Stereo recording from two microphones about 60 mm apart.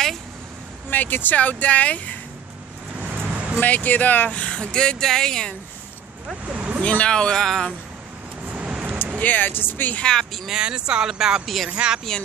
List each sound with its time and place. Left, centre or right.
0.8 s speech: left
3.0 s vehicle: right
3.5 s speech: left
6.4 s a sound: right
6.8 s speech: centre
8.5 s vehicle: centre
9.2 s speech: left
9.9 s speech: centre
10.5 s speech: centre